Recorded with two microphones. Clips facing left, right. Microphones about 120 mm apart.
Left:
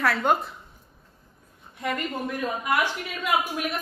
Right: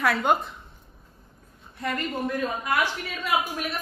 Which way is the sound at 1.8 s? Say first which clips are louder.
Even; 15° left (ahead or behind).